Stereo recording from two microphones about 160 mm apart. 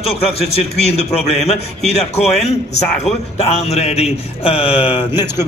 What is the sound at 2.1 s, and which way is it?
A man's voice, 45° left (ahead or behind).